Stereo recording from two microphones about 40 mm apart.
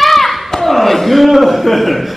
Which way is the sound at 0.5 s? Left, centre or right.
Centre.